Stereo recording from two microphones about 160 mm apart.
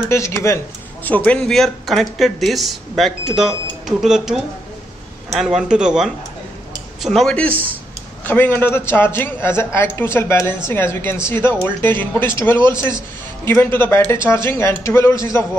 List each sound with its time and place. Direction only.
0.1 s a woman's voice: 15° left (ahead or behind)